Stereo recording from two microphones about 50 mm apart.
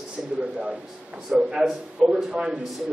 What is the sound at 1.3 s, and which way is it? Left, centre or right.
A man's voice, right.